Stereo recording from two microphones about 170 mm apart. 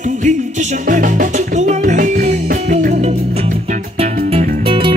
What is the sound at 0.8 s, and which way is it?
Music, 50° right (ahead or behind).